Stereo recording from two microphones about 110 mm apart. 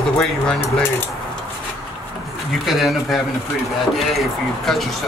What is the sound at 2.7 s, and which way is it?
Speech, centre (ahead or behind).